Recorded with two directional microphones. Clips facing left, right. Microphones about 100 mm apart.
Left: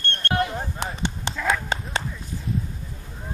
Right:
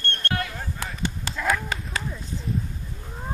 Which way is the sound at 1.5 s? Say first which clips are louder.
Left 1 dB; 25° left (ahead or behind).